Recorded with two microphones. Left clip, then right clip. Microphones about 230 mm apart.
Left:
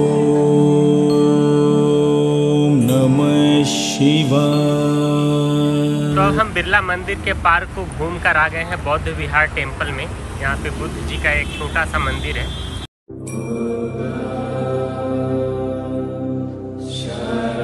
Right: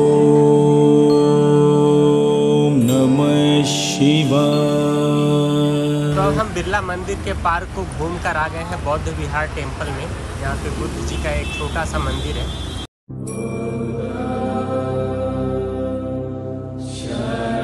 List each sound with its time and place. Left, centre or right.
0.0 s music: centre
6.5 s speech: centre
11.2 s speech: centre